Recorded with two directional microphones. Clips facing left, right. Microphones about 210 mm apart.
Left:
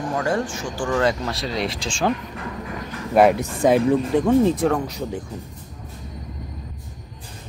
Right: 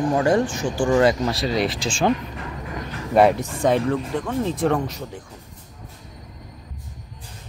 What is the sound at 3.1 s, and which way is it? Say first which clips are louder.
Speech: left 1 dB; centre (ahead or behind).